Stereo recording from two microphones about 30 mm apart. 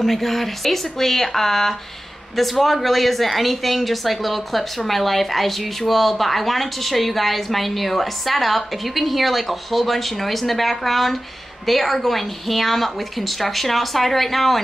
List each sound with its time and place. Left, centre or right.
0.0 s a woman's voice: centre